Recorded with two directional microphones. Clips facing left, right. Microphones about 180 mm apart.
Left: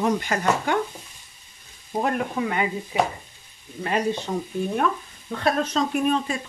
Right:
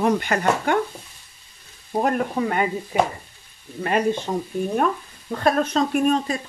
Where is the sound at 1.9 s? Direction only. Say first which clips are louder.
Right 3 dB; 40° right (ahead or behind).